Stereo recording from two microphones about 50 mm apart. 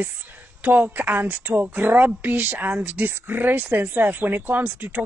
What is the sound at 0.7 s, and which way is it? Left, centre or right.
Speech, right.